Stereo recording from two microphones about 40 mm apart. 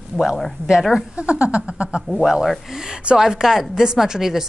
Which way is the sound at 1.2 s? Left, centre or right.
Right.